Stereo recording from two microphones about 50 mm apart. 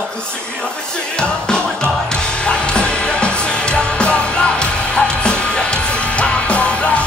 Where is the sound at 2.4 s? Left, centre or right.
Centre.